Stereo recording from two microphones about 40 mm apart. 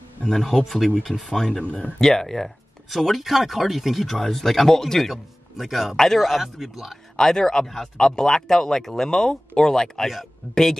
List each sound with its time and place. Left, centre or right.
0.2 s speech: centre
1.6 s speech: left
2.0 s speech: centre
2.9 s speech: centre
4.2 s speech: centre
7.2 s speech: centre